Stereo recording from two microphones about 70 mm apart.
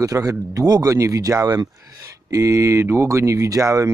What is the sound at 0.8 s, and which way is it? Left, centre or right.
Speech, right.